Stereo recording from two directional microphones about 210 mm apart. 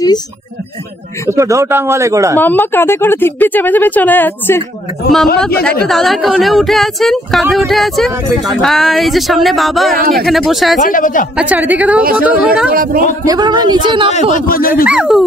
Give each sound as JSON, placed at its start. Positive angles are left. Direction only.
{"t": 1.3, "sound": "a man's voice", "side_deg": -15}
{"t": 2.4, "sound": "speech", "side_deg": 10}
{"t": 5.9, "sound": "speech", "side_deg": 0}
{"t": 9.9, "sound": "speech", "side_deg": -45}
{"t": 10.2, "sound": "speech", "side_deg": 0}
{"t": 10.8, "sound": "speech", "side_deg": 40}
{"t": 11.3, "sound": "a man's voice", "side_deg": -5}
{"t": 12.7, "sound": "speech", "side_deg": -45}
{"t": 13.2, "sound": "a woman's voice", "side_deg": -20}
{"t": 14.3, "sound": "speech", "side_deg": 45}
{"t": 14.9, "sound": "speech", "side_deg": 0}